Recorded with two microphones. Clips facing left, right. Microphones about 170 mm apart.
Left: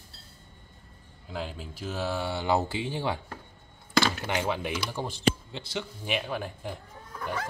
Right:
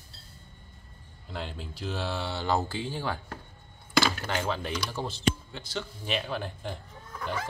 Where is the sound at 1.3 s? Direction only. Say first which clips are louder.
Left 2 dB; 5° left (ahead or behind).